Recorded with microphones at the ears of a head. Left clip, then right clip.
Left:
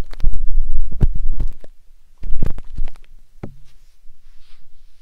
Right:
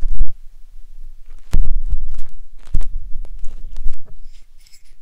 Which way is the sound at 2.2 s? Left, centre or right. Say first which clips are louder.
Left 18 dB; left.